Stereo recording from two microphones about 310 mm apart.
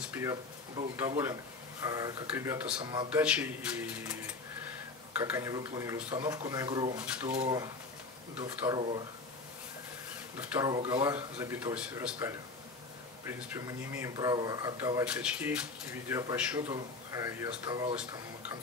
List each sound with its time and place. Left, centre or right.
0.0 s speech: centre
5.2 s speech: centre
10.3 s speech: centre